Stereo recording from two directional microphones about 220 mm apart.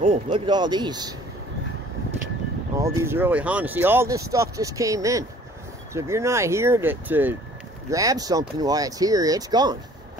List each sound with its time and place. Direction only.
0.1 s speech: 20° right (ahead or behind)
2.8 s speech: 10° right (ahead or behind)